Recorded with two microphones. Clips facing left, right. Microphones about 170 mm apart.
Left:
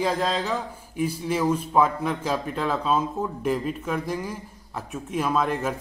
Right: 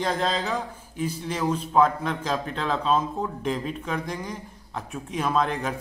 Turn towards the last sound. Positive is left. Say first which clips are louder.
# left 1 dB
turn(degrees=5)  # may be behind; listen again after turning